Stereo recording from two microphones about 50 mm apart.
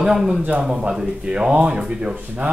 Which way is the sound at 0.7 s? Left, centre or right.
Centre.